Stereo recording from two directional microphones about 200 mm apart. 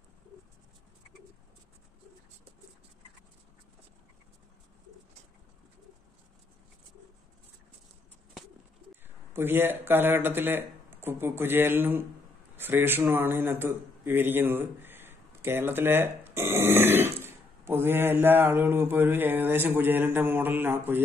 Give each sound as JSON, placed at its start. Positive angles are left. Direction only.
{"t": 9.3, "sound": "a man's voice", "side_deg": -10}